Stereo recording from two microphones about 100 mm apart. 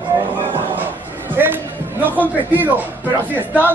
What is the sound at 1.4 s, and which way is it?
Basketball bounce, 20° right (ahead or behind).